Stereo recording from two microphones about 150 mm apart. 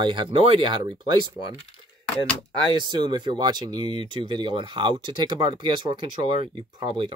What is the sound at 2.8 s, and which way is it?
Speech, 30° right (ahead or behind).